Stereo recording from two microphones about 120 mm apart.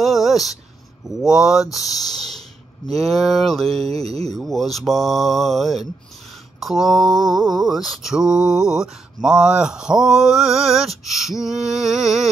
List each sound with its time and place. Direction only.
0.0 s a sound: centre (ahead or behind)
1.0 s mantra: 5° right (ahead or behind)
2.1 s a sound: 5° left (ahead or behind)
3.1 s mantra: centre (ahead or behind)
3.8 s mantra: 60° right (ahead or behind)
4.4 s mantra: centre (ahead or behind)